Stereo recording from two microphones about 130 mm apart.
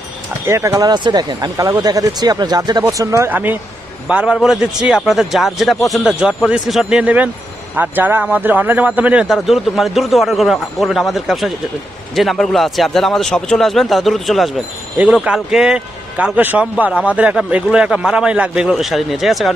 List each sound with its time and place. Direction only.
0.5 s a man's voice: 20° right (ahead or behind); by 19.5 s centre (ahead or behind)